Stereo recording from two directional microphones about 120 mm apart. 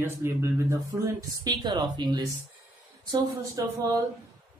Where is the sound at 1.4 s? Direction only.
35° right (ahead or behind).